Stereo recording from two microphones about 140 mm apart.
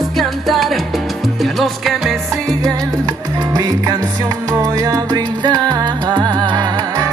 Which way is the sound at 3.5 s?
25° right (ahead or behind).